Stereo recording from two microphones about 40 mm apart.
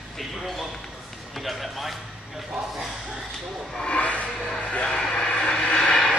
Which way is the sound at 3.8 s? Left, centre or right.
Left.